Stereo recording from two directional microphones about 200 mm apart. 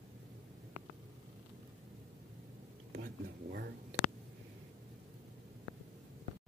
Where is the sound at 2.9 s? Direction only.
55° right (ahead or behind).